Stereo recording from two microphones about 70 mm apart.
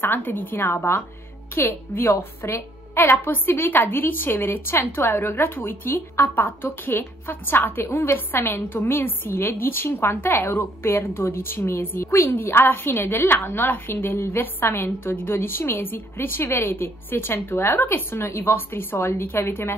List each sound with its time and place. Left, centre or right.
0.0 s a woman's voice: left